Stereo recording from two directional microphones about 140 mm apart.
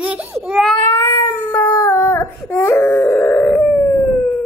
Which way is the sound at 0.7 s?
15° left (ahead or behind).